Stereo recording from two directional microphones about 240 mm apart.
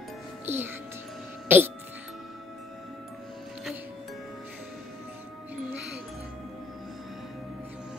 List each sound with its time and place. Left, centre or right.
0.5 s speech: centre